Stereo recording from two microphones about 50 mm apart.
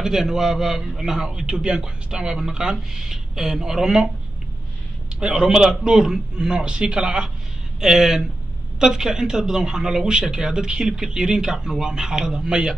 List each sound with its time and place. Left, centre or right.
0.0 s a man's voice: centre
5.2 s a man's voice: centre